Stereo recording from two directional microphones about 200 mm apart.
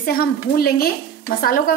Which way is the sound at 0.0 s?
50° left (ahead or behind).